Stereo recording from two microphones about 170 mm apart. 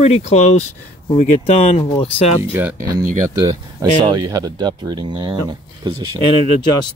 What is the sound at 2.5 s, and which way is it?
Speech, 15° right (ahead or behind).